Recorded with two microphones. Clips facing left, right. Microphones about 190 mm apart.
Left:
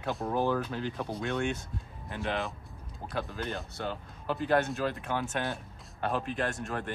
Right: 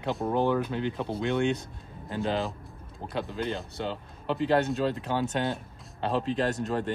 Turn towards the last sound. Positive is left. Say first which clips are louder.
# right 6 dB
turn(degrees=-25)  # may be behind; listen again after turning